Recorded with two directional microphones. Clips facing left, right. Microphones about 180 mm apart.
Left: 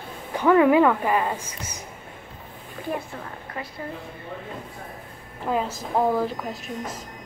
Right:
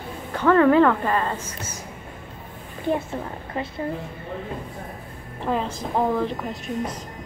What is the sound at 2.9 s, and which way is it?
Speech, 25° right (ahead or behind).